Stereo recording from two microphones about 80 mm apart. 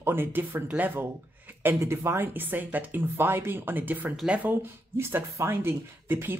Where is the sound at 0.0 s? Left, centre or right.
Right.